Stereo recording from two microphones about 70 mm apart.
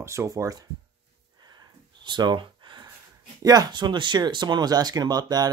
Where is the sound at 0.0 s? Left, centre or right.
Right.